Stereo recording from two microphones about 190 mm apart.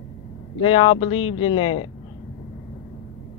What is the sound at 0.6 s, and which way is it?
Speech, 25° left (ahead or behind).